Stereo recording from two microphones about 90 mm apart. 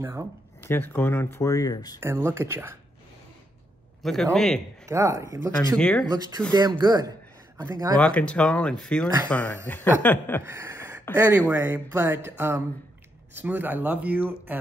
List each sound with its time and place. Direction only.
0.0 s speech: 25° right (ahead or behind)
0.7 s speech: 25° left (ahead or behind); by 2.0 s 45° left (ahead or behind)
2.0 s speech: 25° right (ahead or behind)
4.0 s a man's voice: 5° left (ahead or behind)
4.8 s speech: 35° right (ahead or behind)
5.8 s speech: 10° left (ahead or behind)
6.5 s speech: 50° right (ahead or behind)
8.0 s speech: 15° left (ahead or behind)
10.4 s a sound: 30° right (ahead or behind)
11.1 s speech: 20° right (ahead or behind)